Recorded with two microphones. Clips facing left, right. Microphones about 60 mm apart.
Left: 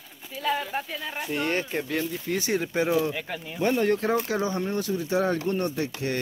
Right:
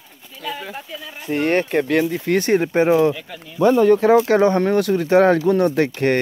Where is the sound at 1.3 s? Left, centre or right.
Right.